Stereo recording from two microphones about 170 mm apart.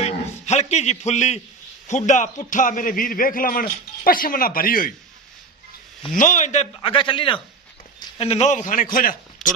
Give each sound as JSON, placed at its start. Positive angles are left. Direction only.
{"t": 0.0, "sound": "a sound", "side_deg": 40}
{"t": 1.9, "sound": "a man's voice", "side_deg": 45}
{"t": 6.1, "sound": "a man's voice", "side_deg": 50}
{"t": 9.4, "sound": "speech", "side_deg": 0}